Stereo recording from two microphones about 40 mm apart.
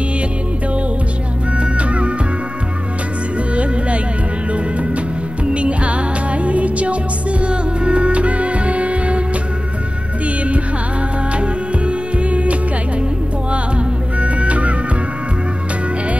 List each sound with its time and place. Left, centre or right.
1.6 s music: right
4.5 s music: right
10.2 s music: right